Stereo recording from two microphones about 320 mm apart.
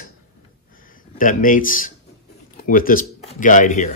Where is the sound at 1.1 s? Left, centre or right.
Left.